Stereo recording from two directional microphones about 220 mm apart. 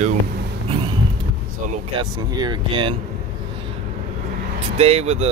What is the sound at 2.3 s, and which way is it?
Speech, 20° right (ahead or behind).